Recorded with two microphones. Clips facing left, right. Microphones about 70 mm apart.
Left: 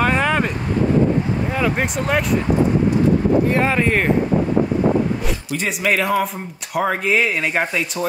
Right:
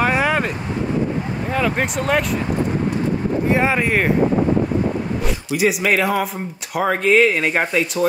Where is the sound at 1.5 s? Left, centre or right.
Centre.